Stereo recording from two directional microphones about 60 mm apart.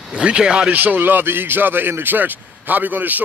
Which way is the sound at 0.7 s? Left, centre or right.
Right.